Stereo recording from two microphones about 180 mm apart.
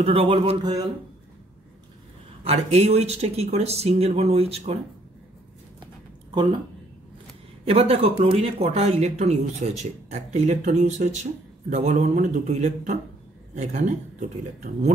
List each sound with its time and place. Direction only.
0.0 s speech: 30° right (ahead or behind)
2.4 s speech: 35° right (ahead or behind)
7.6 s speech: 35° right (ahead or behind)